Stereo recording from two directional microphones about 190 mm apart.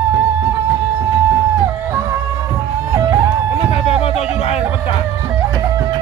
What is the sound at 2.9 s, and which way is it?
Music, 20° right (ahead or behind).